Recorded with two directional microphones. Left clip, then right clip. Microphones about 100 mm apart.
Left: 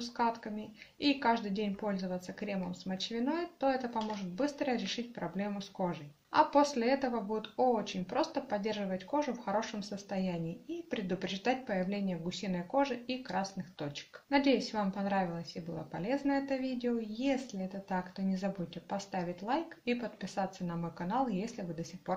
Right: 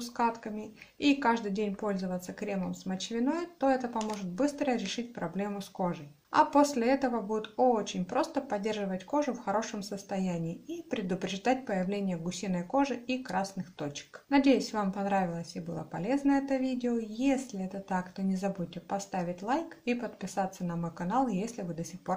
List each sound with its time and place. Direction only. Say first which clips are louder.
0.0 s speech: right 3 dB; 35° right (ahead or behind)